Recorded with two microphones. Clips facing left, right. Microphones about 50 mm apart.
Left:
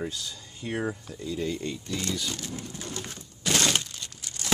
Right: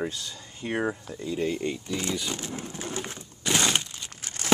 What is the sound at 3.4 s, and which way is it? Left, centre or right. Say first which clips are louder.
Crack: right 1 dB; centre.